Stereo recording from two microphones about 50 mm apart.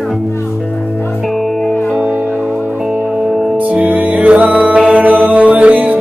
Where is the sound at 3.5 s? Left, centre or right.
Right.